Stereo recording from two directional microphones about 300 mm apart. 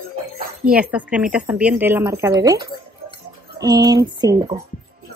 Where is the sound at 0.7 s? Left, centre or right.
Centre.